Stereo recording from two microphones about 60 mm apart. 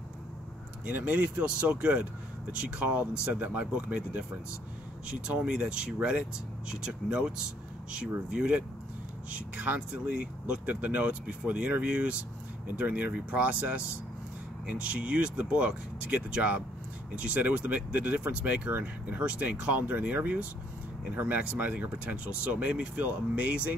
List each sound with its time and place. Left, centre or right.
0.8 s speech: right